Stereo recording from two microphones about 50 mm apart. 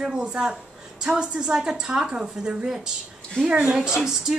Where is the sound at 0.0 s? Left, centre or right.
Centre.